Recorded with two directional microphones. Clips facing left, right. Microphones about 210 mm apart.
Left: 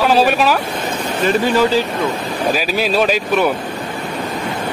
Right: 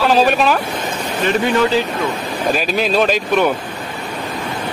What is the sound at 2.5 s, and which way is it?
Speech, 5° left (ahead or behind).